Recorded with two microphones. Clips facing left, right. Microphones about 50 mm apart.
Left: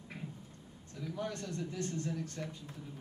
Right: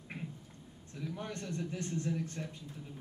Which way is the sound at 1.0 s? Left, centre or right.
Right.